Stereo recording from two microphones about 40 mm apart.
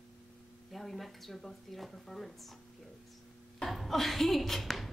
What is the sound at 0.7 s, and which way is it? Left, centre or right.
Speech, centre.